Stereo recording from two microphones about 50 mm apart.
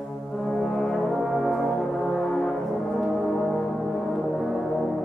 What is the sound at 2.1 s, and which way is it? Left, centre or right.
Brass instrument, centre.